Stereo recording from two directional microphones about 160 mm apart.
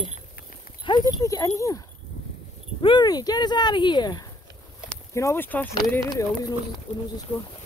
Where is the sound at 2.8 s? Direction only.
30° left (ahead or behind).